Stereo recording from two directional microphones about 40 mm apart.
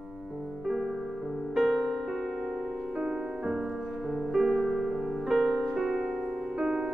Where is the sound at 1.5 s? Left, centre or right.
Centre.